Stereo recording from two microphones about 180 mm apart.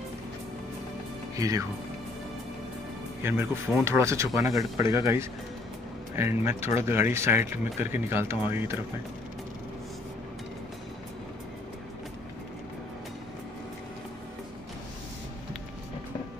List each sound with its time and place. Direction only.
1.3 s speech: 20° right (ahead or behind)
3.2 s speech: 15° right (ahead or behind)